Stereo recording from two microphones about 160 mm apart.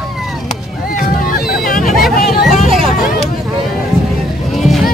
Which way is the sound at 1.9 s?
Centre (ahead or behind).